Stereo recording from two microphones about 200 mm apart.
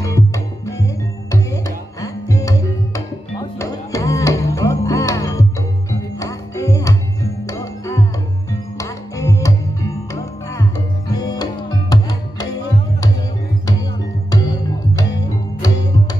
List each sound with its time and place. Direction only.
0.0 s music: 15° left (ahead or behind)
15.6 s music: 20° left (ahead or behind)